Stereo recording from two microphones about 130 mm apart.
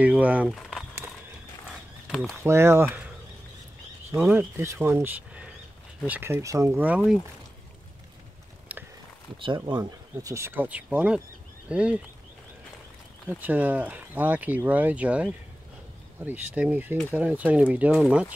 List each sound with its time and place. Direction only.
0.0 s speech: 10° right (ahead or behind)
0.6 s crumpling: centre (ahead or behind)
2.0 s speech: 5° left (ahead or behind)
2.4 s speech: 20° right (ahead or behind)
4.2 s speech: 15° right (ahead or behind)
9.7 s speech: 35° right (ahead or behind); by 12.0 s 10° right (ahead or behind)
13.3 s speech: 15° right (ahead or behind)